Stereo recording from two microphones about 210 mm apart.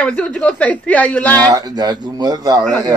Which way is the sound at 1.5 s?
20° right (ahead or behind).